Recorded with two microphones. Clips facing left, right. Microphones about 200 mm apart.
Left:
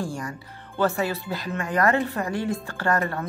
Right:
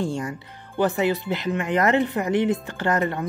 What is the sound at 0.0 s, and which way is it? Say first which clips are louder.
Speech: right 4 dB; 25° right (ahead or behind).